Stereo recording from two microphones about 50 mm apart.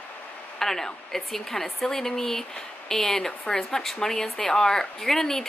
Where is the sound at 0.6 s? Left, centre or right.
Centre.